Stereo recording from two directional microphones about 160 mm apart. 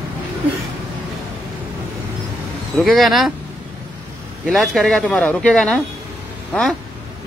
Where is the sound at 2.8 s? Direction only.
Centre (ahead or behind).